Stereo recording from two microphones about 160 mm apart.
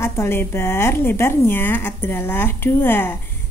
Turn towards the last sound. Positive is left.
turn(degrees=15)  # may be behind; listen again after turning